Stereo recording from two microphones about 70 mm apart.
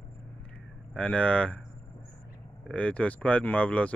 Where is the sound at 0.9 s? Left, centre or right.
Centre.